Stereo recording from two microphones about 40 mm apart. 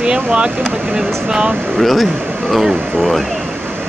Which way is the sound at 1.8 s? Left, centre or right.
Centre.